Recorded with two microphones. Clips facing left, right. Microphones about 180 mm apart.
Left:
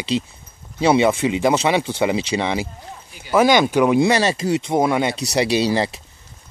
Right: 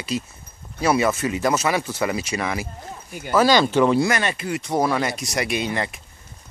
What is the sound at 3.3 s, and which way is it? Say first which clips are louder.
Speech: left 2 dB; 15° left (ahead or behind).